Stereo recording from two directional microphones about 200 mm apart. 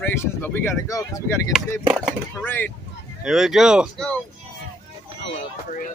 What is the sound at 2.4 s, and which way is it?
Speech, 10° left (ahead or behind).